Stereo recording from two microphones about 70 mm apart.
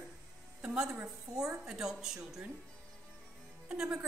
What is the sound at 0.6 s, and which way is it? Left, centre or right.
A woman's voice, centre.